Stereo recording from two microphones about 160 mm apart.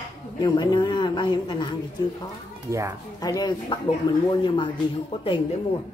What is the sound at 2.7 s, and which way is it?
Speech, 20° right (ahead or behind).